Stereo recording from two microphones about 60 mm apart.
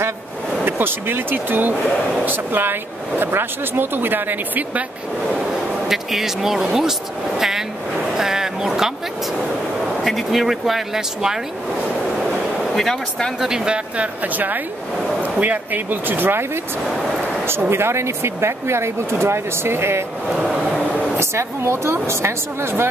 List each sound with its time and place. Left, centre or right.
0.7 s speech: right
5.9 s speech: centre
8.2 s a sound: centre
10.0 s speech: centre
12.3 s a sound: centre
13.4 s speech: centre
13.9 s speech: right
17.5 s speech: right
20.2 s a sound: centre
21.2 s speech: right